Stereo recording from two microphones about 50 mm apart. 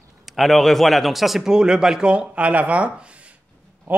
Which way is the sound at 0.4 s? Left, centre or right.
Centre.